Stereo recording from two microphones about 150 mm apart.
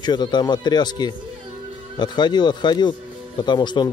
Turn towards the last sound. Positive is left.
turn(degrees=30)  # may be behind; listen again after turning